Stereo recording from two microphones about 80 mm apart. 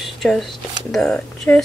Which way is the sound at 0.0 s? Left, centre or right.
Centre.